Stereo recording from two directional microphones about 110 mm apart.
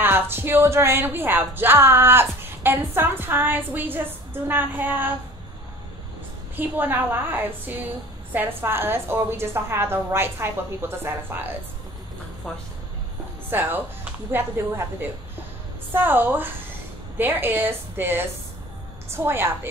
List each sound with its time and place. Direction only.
0.0 s speech: 20° right (ahead or behind)
6.5 s a woman's voice: 15° right (ahead or behind)
13.5 s speech: 20° right (ahead or behind)